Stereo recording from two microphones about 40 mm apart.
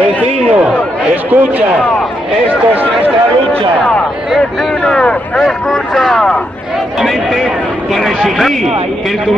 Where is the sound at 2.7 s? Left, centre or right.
Right.